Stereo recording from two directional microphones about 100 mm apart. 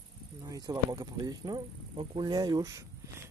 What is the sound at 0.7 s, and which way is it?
Speech, 40° right (ahead or behind).